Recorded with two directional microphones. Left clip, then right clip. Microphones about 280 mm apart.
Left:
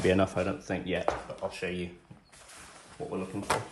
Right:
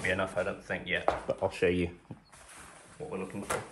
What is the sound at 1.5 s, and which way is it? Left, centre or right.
Speech, right.